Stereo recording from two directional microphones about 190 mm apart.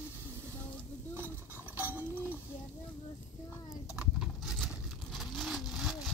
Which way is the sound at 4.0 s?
5° right (ahead or behind).